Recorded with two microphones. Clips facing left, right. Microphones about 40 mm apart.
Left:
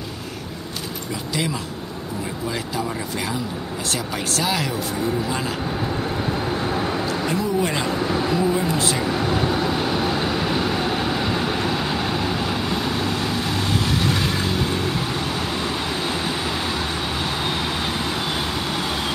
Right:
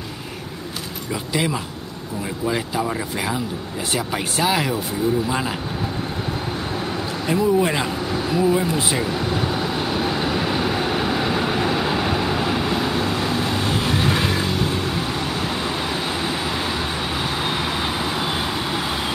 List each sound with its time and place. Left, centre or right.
1.3 s speech: centre
6.7 s vehicle: centre
7.1 s speech: centre
8.0 s a sound: centre
8.3 s speech: centre
9.0 s vehicle: centre
14.4 s vehicle: centre